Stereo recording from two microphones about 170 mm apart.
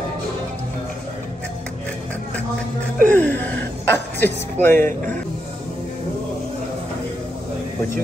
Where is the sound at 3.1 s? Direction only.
10° left (ahead or behind).